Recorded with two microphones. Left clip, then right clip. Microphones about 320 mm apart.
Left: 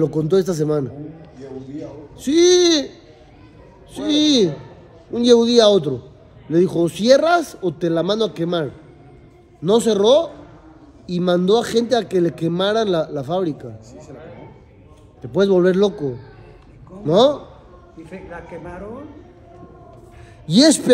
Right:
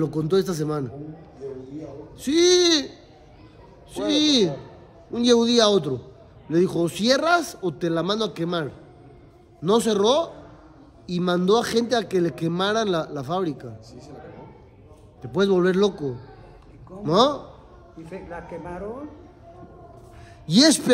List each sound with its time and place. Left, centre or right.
0.0 s a man's voice: centre
2.1 s a man's voice: centre
3.9 s a man's voice: centre
15.3 s a man's voice: centre
18.0 s a man's voice: right
20.4 s a man's voice: centre